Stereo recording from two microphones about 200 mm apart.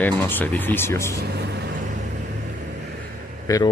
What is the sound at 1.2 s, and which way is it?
Speech, 55° right (ahead or behind).